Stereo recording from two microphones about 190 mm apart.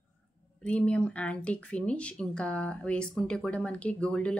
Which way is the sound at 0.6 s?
5° left (ahead or behind).